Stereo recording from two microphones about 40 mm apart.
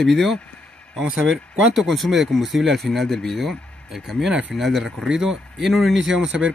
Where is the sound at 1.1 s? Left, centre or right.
Centre.